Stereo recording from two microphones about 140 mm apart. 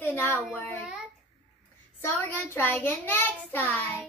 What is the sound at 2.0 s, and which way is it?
A child's voice, 15° left (ahead or behind).